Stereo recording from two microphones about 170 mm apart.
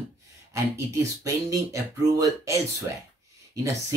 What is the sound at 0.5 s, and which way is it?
Speech, 20° right (ahead or behind).